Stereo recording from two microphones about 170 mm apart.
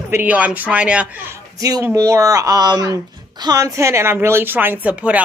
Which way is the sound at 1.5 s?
20° right (ahead or behind).